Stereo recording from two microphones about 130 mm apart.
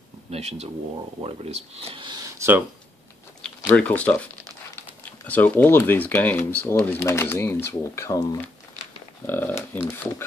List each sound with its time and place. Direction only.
0.3 s speech: 55° right (ahead or behind)
2.2 s speech: 20° right (ahead or behind)
3.7 s speech: 10° left (ahead or behind); by 8.4 s 25° left (ahead or behind)
9.2 s speech: 15° left (ahead or behind)